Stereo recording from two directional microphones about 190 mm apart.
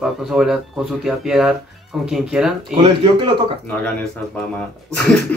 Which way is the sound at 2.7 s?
25° right (ahead or behind).